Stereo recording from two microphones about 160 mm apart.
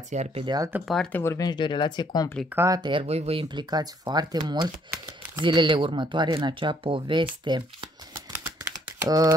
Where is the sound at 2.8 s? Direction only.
30° right (ahead or behind).